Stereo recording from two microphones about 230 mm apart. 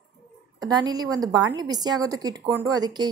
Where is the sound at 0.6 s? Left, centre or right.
Centre.